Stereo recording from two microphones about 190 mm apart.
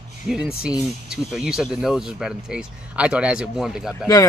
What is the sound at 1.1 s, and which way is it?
Speech, 5° right (ahead or behind).